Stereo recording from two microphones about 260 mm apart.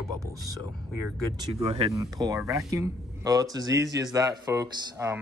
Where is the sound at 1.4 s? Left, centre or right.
Centre.